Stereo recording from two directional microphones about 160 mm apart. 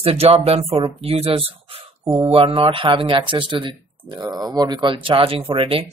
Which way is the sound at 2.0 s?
20° right (ahead or behind).